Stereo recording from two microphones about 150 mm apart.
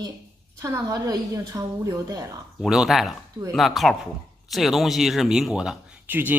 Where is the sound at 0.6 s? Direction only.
20° right (ahead or behind).